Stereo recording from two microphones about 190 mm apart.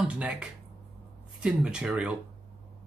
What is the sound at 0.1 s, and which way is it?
Speech, 5° right (ahead or behind).